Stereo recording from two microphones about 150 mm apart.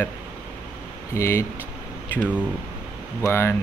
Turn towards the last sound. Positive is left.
turn(degrees=15)  # may be behind; listen again after turning